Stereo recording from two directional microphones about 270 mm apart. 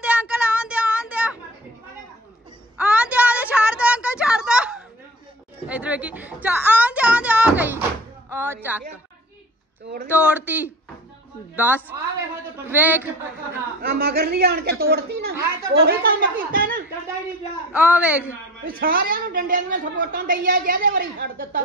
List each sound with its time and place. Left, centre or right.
0.0 s a sound: centre
2.8 s a sound: centre
5.7 s music: centre
8.3 s a sound: centre
8.6 s a woman's voice: centre
10.0 s a woman's voice: centre
13.7 s a woman's voice: right
17.7 s speech: centre
18.7 s a woman's voice: right